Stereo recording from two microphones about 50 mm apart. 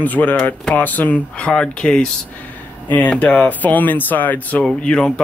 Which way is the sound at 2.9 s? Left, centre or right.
Left.